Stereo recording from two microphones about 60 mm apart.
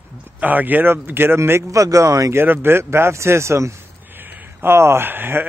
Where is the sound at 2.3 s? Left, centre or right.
Right.